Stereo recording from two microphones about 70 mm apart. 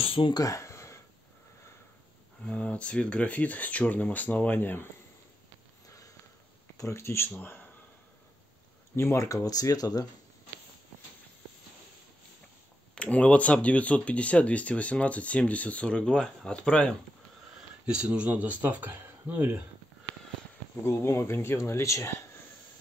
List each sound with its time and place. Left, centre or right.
0.3 s a sound: left
2.4 s speech: centre
6.8 s speech: left
8.9 s speech: left
12.9 s speech: centre
17.8 s speech: centre
20.8 s speech: left